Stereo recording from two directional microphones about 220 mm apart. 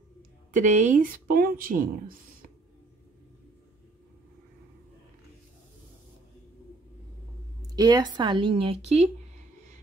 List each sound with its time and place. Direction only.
0.5 s speech: 35° right (ahead or behind)
7.7 s speech: 20° right (ahead or behind)